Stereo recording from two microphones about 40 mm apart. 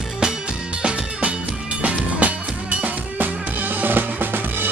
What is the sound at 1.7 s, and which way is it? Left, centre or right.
Music, right.